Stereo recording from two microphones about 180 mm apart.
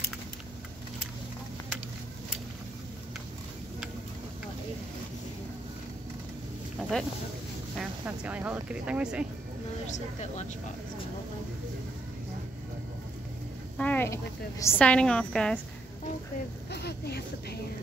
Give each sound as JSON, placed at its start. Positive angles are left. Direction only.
{"t": 6.8, "sound": "a sound", "side_deg": 5}
{"t": 7.7, "sound": "speech", "side_deg": -5}
{"t": 13.7, "sound": "a woman's voice", "side_deg": 10}
{"t": 16.7, "sound": "speech", "side_deg": 65}